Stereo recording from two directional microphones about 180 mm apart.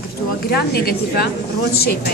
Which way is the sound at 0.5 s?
60° left (ahead or behind).